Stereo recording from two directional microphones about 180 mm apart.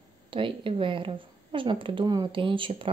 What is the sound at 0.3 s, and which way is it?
Speech, 30° right (ahead or behind).